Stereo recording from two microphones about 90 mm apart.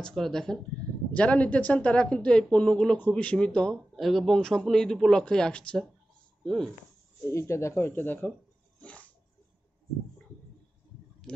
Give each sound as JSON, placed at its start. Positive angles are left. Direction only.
{"t": 0.0, "sound": "a woman's voice", "side_deg": 5}
{"t": 7.2, "sound": "speech", "side_deg": 30}
{"t": 11.3, "sound": "a sound", "side_deg": 10}